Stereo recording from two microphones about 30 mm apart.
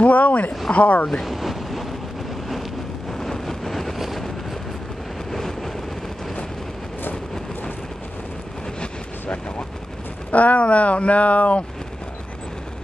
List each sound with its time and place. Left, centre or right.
0.0 s speech: left
0.7 s speech: left
1.2 s waves: centre
3.1 s vehicle: centre
5.3 s vehicle: centre
10.3 s speech: left